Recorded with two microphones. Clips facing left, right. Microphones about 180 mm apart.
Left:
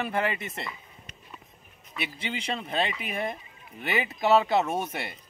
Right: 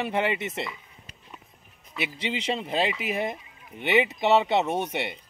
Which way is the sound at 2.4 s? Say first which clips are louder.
Right 3 dB; 25° right (ahead or behind).